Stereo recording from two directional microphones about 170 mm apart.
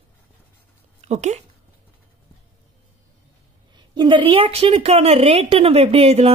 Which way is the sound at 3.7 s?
25° right (ahead or behind).